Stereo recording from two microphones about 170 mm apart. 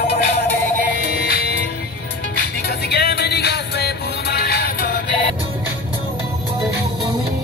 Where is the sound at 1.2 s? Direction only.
65° left (ahead or behind).